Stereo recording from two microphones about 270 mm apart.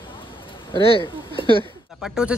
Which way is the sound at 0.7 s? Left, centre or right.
Centre.